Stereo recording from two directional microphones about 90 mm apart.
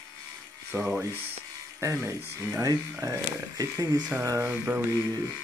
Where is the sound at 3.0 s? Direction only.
40° right (ahead or behind).